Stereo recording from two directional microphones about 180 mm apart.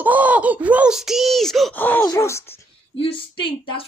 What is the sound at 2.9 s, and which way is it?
Speech, 30° left (ahead or behind).